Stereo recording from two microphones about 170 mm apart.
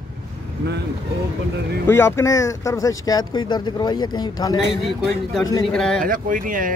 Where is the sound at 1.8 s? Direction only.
15° left (ahead or behind).